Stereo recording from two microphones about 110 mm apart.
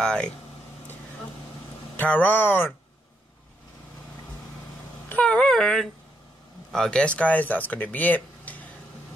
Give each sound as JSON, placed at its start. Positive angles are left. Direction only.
{"t": 0.0, "sound": "speech", "side_deg": 10}
{"t": 2.0, "sound": "speech", "side_deg": 15}
{"t": 5.1, "sound": "speech", "side_deg": 10}